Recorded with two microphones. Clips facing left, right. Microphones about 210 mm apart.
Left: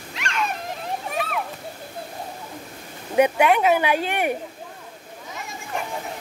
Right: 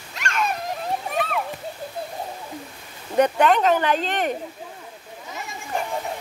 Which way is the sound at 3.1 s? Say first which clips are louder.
Even; 10° left (ahead or behind).